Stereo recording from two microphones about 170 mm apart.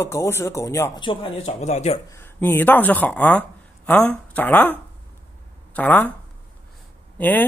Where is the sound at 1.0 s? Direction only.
30° left (ahead or behind).